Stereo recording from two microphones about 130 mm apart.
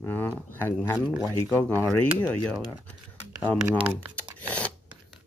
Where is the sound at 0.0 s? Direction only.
15° left (ahead or behind).